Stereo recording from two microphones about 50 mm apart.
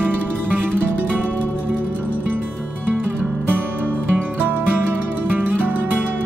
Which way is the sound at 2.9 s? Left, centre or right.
Right.